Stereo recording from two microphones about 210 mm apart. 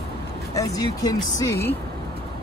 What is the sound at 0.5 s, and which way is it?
Speech, 15° left (ahead or behind).